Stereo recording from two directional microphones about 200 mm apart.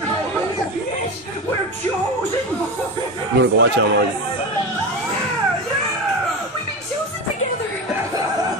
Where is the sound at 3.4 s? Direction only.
60° right (ahead or behind).